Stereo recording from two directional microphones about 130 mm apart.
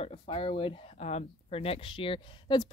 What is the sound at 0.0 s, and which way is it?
Speech, 45° left (ahead or behind).